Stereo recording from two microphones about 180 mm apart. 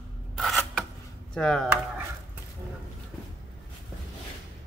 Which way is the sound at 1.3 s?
5° left (ahead or behind).